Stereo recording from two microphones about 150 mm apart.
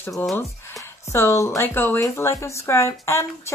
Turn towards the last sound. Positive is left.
turn(degrees=20)  # may be behind; listen again after turning